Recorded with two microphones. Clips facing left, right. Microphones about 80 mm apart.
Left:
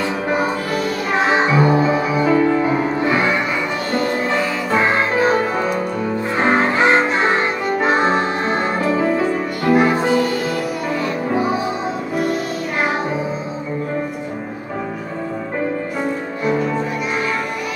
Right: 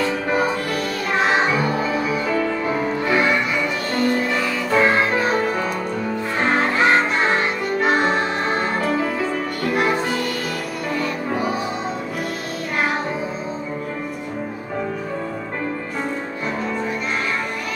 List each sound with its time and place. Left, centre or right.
1.3 s music: left
4.7 s music: left
9.7 s music: centre